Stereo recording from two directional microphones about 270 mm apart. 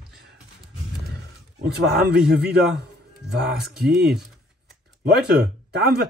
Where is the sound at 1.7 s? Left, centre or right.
Right.